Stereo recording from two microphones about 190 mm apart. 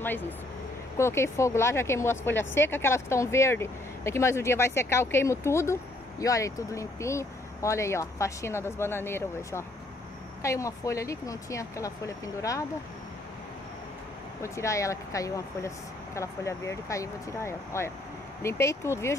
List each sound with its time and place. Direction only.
0.9 s speech: 15° left (ahead or behind)
14.4 s speech: 15° left (ahead or behind)